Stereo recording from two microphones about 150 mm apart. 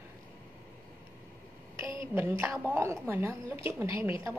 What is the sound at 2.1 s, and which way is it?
A woman's voice, 15° right (ahead or behind).